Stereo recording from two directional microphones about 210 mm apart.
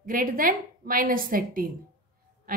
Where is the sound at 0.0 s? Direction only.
40° right (ahead or behind).